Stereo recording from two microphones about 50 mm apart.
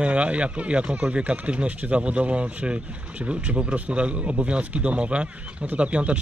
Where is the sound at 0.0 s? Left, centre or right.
Right.